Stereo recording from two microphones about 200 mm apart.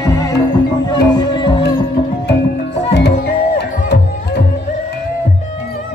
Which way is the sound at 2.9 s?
55° left (ahead or behind).